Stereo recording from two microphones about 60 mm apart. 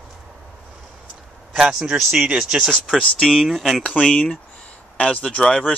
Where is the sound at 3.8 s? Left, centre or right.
Centre.